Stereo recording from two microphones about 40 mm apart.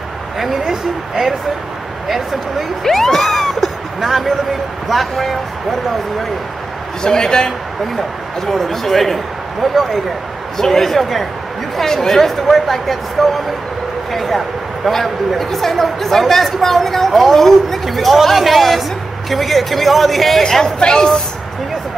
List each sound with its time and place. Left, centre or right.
0.7 s speech: centre
2.8 s a woman's voice: centre
7.0 s a man's voice: centre
8.5 s a woman's voice: centre